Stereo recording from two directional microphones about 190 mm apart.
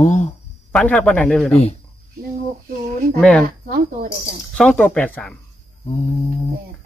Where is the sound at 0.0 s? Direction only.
40° left (ahead or behind).